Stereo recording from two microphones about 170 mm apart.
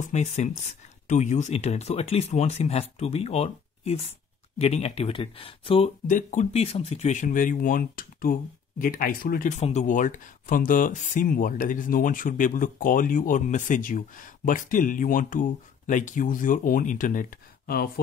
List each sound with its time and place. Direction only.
0.0 s speech: 40° left (ahead or behind)
6.0 s speech: 45° left (ahead or behind)